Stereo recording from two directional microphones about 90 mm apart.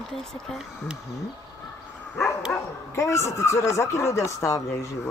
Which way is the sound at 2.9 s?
35° left (ahead or behind).